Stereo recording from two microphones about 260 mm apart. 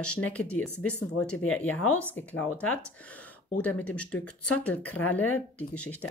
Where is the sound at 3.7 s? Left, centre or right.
Centre.